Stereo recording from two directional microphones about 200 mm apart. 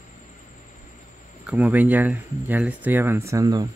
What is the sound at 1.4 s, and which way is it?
Speech, 10° right (ahead or behind).